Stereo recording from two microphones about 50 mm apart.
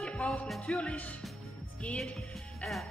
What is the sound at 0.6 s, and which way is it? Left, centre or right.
Music, left.